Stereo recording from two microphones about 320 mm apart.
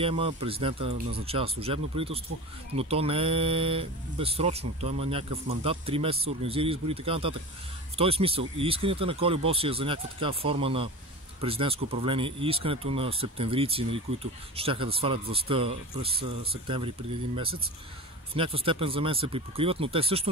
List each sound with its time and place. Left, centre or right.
0.0 s speech: centre
18.3 s speech: centre